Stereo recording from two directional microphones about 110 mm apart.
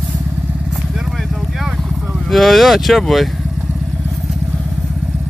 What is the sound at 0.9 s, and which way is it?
Vehicle, centre (ahead or behind).